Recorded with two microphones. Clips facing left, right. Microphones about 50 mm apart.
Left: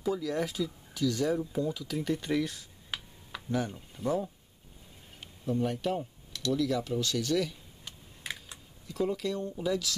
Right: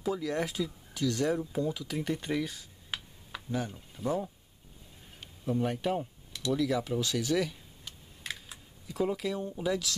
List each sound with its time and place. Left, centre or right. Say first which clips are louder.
0.0 s speech: left 1 dB; centre
2.3 s a sound: left 2 dB; centre
3.7 s speech: left 1 dB; centre
5.4 s speech: even; centre
7.8 s typing: left 1 dB; centre